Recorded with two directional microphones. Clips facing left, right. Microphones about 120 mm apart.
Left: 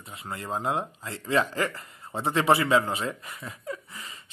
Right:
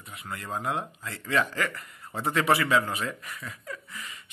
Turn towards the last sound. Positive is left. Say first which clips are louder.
# even
turn(degrees=30)  # may be behind; listen again after turning